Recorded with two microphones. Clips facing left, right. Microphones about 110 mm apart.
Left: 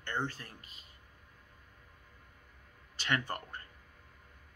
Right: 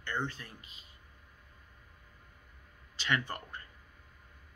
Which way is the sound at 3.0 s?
45° left (ahead or behind).